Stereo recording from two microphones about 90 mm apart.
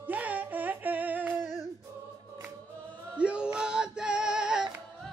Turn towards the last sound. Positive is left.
turn(degrees=-10)  # may be behind; listen again after turning